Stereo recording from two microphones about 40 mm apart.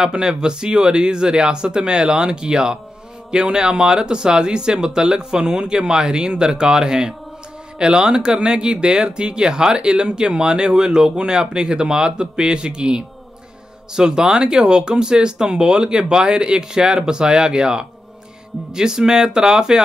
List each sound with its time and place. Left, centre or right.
0.0 s speech: centre